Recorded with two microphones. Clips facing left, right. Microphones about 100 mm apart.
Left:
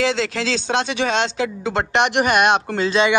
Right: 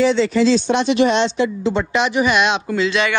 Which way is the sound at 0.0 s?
90° left.